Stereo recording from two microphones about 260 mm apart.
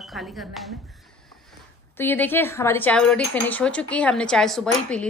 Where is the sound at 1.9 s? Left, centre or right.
Centre.